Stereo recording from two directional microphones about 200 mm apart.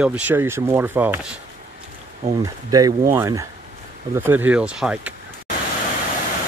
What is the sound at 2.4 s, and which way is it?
Speech, 20° right (ahead or behind).